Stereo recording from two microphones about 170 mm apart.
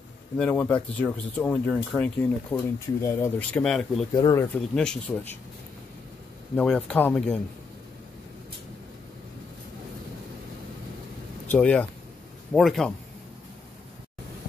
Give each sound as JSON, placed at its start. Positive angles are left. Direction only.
{"t": 0.4, "sound": "speech", "side_deg": 10}
{"t": 4.1, "sound": "speech", "side_deg": 25}
{"t": 4.6, "sound": "speech", "side_deg": 5}
{"t": 6.5, "sound": "speech", "side_deg": 5}
{"t": 11.4, "sound": "speech", "side_deg": 10}